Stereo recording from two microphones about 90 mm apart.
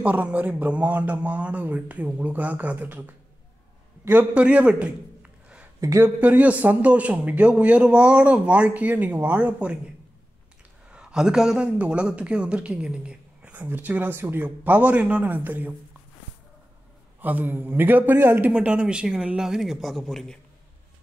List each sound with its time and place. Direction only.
0.0 s a man's voice: 15° right (ahead or behind)
5.8 s speech: 35° right (ahead or behind)
6.0 s a man's voice: 15° right (ahead or behind)
10.9 s a man's voice: 10° right (ahead or behind)
17.2 s a man's voice: 20° right (ahead or behind); by 20.3 s 5° left (ahead or behind)